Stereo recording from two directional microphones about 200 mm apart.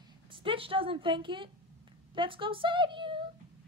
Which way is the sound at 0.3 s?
25° right (ahead or behind).